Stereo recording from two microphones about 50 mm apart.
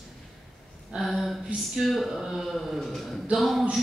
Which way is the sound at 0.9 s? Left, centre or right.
Centre.